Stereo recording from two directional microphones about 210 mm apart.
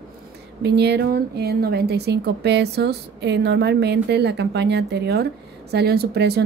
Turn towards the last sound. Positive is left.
turn(degrees=-50)  # may be behind; listen again after turning